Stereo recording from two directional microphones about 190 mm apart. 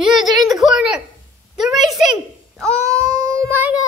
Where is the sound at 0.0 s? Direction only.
Centre (ahead or behind).